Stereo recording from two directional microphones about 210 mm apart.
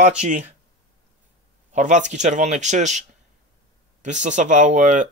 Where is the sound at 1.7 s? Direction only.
35° right (ahead or behind).